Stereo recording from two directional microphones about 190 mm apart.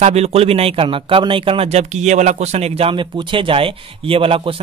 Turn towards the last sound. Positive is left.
turn(degrees=-30)  # may be behind; listen again after turning